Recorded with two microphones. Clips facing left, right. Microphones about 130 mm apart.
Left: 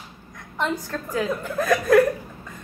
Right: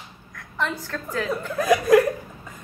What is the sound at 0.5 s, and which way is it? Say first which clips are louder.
Speech: left 2 dB; 15° left (ahead or behind).